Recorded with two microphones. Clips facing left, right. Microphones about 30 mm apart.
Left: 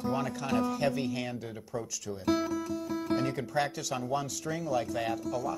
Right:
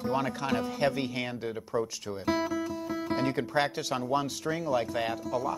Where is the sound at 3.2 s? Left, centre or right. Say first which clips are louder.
Right 3 dB; right.